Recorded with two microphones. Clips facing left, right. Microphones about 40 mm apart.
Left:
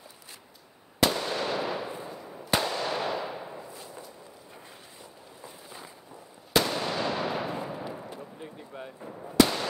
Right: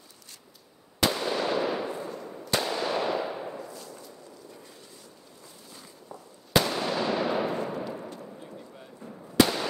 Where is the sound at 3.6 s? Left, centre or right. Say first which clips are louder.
Right 2 dB; centre.